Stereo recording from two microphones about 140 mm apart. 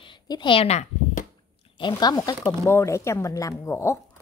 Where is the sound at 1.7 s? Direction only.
30° left (ahead or behind).